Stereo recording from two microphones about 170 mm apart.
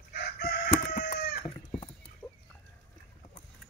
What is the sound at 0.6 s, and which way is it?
Chicken, 50° left (ahead or behind).